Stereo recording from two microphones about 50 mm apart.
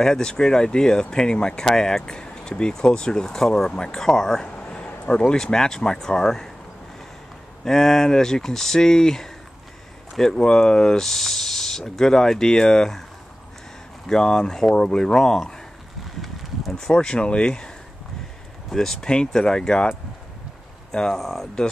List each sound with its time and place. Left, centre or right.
0.0 s speech: centre
4.5 s a sound: left
5.1 s speech: centre
7.6 s speech: centre
14.0 s speech: centre
16.7 s speech: centre
18.7 s speech: centre
20.9 s speech: centre